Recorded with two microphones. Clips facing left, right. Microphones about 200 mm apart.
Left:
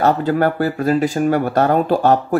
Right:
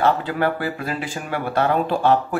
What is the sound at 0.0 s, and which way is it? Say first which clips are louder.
Speech: left 4 dB; 45° left (ahead or behind).